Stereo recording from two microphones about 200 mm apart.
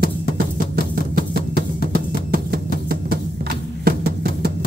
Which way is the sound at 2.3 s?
45° right (ahead or behind).